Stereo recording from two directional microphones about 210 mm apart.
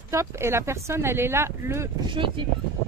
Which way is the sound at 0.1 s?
15° right (ahead or behind).